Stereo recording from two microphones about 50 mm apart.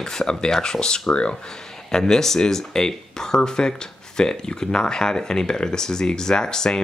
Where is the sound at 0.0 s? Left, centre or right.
Centre.